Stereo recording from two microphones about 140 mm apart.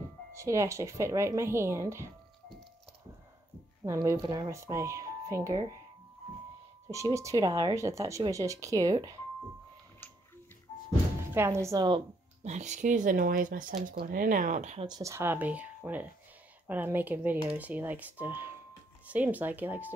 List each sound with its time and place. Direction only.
0.3 s speech: 20° right (ahead or behind)
3.8 s speech: 20° right (ahead or behind)
6.9 s speech: 20° right (ahead or behind)
11.3 s speech: 20° right (ahead or behind)
12.4 s speech: 55° right (ahead or behind)
14.9 s speech: 25° right (ahead or behind)